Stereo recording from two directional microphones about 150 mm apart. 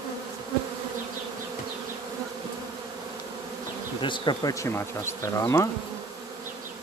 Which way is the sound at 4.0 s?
30° left (ahead or behind).